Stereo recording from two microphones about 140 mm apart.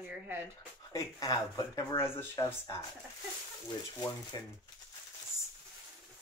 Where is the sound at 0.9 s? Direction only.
25° left (ahead or behind).